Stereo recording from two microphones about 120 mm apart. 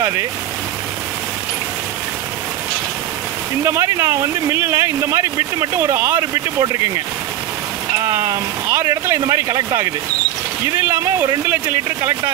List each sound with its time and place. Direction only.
3.6 s speech: 25° right (ahead or behind)
8.1 s speech: 25° right (ahead or behind)